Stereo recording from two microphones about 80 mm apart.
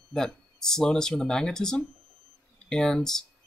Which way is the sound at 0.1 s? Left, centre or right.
Centre.